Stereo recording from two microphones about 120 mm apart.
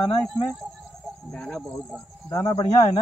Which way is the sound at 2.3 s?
35° left (ahead or behind).